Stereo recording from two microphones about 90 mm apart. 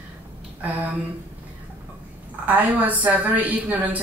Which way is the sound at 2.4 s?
15° right (ahead or behind).